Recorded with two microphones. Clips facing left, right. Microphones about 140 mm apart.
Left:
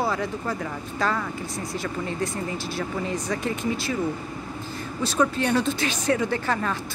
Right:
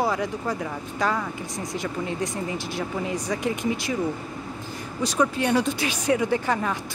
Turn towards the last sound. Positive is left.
turn(degrees=-15)  # may be behind; listen again after turning